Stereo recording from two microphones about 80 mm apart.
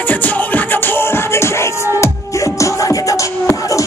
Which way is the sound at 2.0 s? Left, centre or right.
Left.